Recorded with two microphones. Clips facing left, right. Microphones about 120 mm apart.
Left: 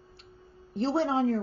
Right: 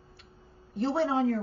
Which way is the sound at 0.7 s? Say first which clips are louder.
Left 1 dB; 30° left (ahead or behind).